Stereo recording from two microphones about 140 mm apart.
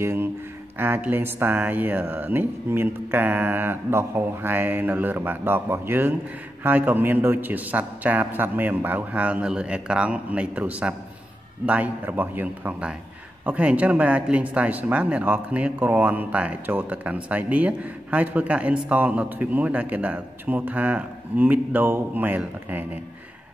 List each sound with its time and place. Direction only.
0.0 s speech: 15° right (ahead or behind)